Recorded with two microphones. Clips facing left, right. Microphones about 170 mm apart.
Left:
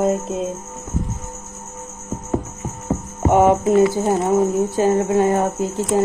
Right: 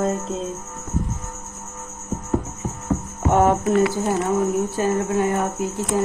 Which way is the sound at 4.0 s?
25° left (ahead or behind).